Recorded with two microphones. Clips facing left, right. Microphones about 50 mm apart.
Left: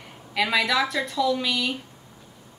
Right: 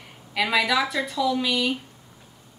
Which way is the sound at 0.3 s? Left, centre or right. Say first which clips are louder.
Right 1 dB; centre.